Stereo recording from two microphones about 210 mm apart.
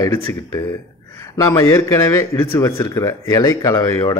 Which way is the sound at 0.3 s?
15° left (ahead or behind).